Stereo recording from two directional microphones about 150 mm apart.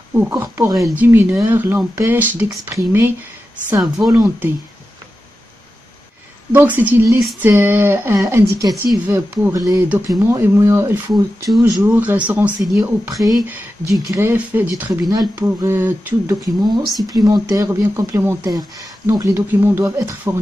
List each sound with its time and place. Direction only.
0.1 s speech: 15° right (ahead or behind)
4.1 s speech: 15° right (ahead or behind)
6.5 s speech: 10° right (ahead or behind)
11.9 s speech: 10° right (ahead or behind)
13.1 s speech: centre (ahead or behind)
14.0 s speech: 15° right (ahead or behind)
14.9 s speech: 25° right (ahead or behind)
15.4 s speech: 15° right (ahead or behind)